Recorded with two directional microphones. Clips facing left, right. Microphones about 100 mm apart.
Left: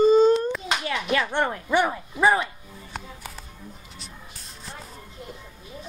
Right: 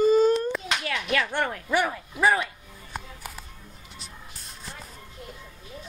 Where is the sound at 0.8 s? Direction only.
20° left (ahead or behind).